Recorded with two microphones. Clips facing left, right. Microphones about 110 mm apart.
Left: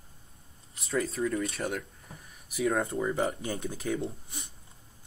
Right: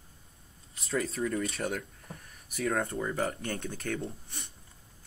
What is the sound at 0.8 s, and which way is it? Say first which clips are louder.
Speech: left 2 dB; centre (ahead or behind).